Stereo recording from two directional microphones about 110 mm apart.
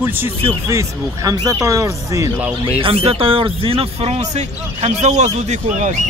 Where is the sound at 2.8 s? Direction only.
60° right (ahead or behind); by 5.9 s 90° right.